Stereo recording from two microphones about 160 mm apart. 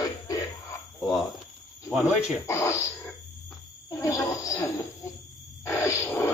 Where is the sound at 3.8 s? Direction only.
20° left (ahead or behind).